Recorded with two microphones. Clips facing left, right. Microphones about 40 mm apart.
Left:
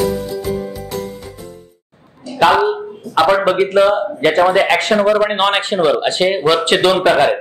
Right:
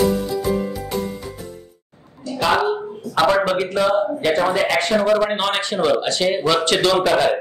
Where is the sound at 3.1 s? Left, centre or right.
Left.